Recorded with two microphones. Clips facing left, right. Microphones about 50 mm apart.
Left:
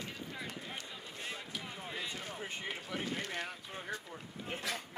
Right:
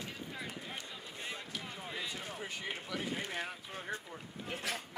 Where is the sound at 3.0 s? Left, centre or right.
Centre.